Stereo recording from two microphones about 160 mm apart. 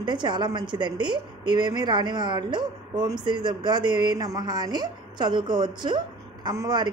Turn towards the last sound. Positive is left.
turn(degrees=-25)  # may be behind; listen again after turning